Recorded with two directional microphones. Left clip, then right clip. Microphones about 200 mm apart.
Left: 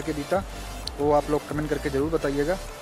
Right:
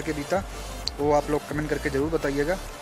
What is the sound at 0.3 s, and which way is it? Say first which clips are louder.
Speech: left 2 dB; 5° left (ahead or behind).